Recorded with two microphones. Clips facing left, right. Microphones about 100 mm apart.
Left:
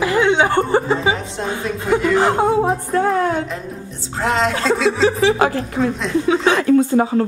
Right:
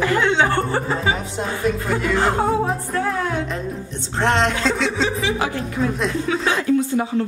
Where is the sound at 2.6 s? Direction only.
40° left (ahead or behind).